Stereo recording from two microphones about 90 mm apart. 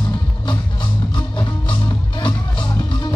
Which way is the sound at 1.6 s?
60° left (ahead or behind).